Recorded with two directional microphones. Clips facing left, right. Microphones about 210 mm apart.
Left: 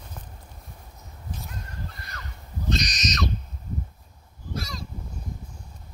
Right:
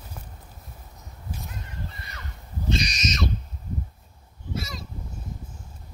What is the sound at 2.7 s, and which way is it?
Bird, 10° right (ahead or behind).